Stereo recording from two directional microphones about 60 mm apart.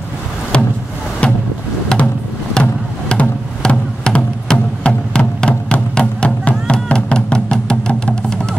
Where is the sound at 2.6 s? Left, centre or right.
Centre.